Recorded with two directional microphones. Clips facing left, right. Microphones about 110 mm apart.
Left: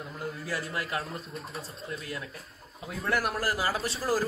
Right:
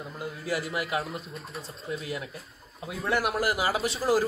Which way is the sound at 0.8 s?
5° right (ahead or behind).